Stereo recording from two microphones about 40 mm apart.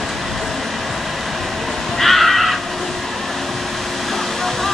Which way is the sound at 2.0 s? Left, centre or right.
Centre.